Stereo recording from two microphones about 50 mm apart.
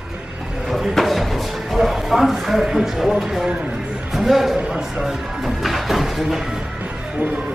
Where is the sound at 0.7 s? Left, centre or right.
Centre.